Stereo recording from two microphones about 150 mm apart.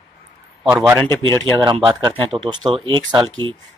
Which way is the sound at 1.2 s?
30° right (ahead or behind).